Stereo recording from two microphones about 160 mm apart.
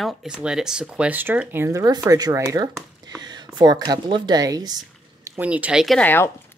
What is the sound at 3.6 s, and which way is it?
Speech, 25° right (ahead or behind).